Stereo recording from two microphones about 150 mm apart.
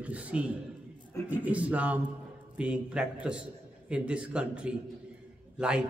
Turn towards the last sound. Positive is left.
turn(degrees=-5)  # may be behind; listen again after turning